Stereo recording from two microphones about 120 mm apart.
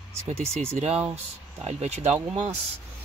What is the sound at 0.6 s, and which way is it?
Speech, 60° right (ahead or behind).